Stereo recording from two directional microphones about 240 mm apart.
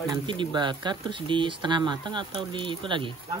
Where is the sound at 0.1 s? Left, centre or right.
Centre.